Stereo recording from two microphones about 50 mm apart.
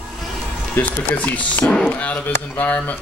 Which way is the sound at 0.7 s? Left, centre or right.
Left.